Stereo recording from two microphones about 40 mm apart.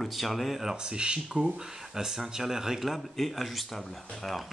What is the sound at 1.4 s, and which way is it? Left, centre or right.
Speech, centre.